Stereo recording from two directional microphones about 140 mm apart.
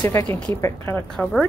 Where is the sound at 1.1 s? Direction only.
5° left (ahead or behind).